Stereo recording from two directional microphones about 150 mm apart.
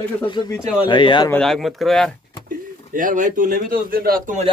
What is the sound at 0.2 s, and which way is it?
Speech, 30° left (ahead or behind).